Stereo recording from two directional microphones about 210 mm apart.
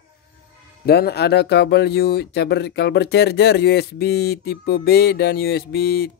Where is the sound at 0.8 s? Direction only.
50° left (ahead or behind).